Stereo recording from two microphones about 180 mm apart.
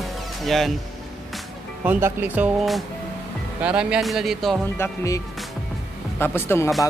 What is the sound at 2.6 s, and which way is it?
Speech, centre (ahead or behind).